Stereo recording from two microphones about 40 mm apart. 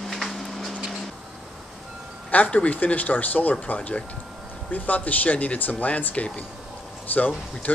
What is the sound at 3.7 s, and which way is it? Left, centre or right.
Speech, left.